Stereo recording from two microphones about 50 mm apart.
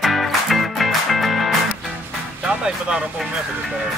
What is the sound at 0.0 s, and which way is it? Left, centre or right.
Music, centre.